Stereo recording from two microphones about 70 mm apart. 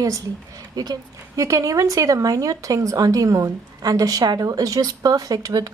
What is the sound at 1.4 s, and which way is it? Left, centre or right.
A woman's voice, right.